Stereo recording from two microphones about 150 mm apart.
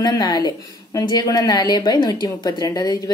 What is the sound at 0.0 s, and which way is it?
Speech, 30° left (ahead or behind).